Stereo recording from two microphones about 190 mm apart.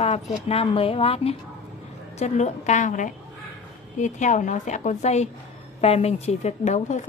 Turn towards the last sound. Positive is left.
turn(degrees=35)  # may be behind; listen again after turning